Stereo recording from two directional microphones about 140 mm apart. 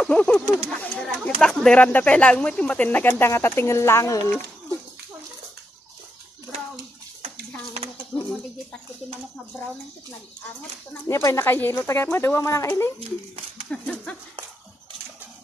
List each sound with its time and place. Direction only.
0.0 s speech: 5° left (ahead or behind)
0.7 s a sound: 10° left (ahead or behind)
1.6 s speech: 10° left (ahead or behind)
8.1 s a sound: 5° left (ahead or behind)
11.1 s speech: 20° left (ahead or behind)
13.7 s speech: 10° left (ahead or behind)